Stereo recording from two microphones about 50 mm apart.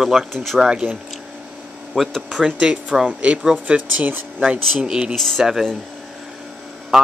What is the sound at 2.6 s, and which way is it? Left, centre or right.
Speech, centre.